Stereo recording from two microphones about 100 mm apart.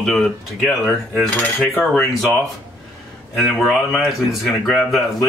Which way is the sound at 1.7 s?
Centre (ahead or behind).